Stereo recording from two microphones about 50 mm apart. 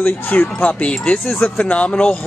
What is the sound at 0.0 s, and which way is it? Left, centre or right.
Speech, left.